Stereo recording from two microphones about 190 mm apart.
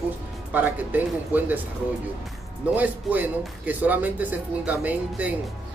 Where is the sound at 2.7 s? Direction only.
10° right (ahead or behind).